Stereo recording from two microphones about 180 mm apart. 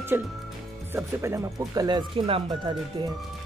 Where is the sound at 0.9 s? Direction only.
15° right (ahead or behind).